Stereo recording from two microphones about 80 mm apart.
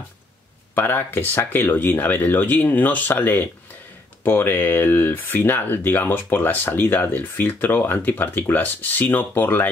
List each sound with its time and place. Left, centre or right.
0.7 s speech: left